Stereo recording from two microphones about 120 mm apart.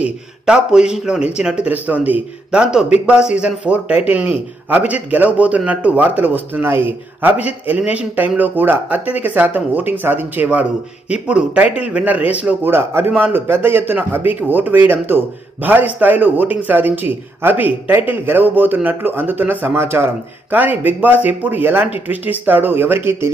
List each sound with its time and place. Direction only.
0.0 s speech: 5° right (ahead or behind)